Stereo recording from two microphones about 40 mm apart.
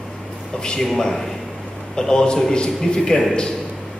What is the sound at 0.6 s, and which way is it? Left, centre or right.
A man's voice, centre.